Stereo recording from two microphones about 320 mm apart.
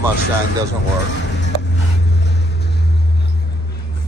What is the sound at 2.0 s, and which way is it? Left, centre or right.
Vehicle, left.